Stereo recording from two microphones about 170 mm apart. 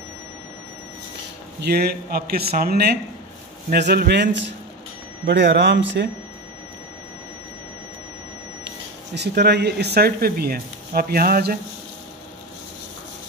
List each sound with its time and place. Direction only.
1.6 s a man's voice: 70° right (ahead or behind); by 6.0 s 90° right
8.6 s speech: 85° right; by 11.5 s 60° right (ahead or behind)